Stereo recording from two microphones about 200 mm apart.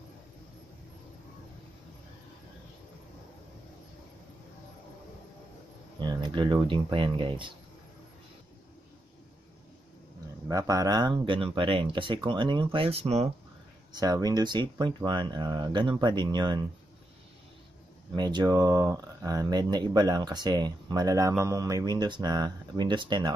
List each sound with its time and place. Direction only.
5.9 s speech: 20° right (ahead or behind)
10.5 s speech: 15° right (ahead or behind)
13.9 s speech: 20° right (ahead or behind)
18.1 s speech: 20° right (ahead or behind)